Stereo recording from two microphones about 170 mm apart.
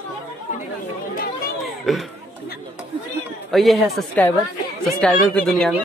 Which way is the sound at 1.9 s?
Centre (ahead or behind).